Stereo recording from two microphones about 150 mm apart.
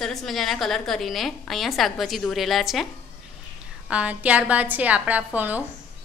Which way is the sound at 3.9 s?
10° right (ahead or behind).